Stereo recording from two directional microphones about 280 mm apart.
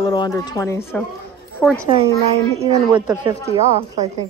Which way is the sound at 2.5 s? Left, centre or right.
Centre.